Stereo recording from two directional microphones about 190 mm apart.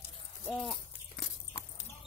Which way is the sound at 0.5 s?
Centre (ahead or behind).